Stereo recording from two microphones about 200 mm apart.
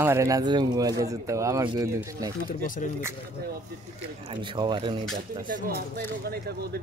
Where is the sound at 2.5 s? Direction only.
40° left (ahead or behind).